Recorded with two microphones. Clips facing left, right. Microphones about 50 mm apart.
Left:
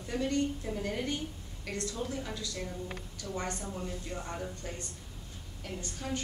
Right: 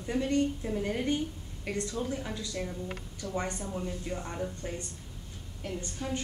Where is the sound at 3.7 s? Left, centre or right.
Centre.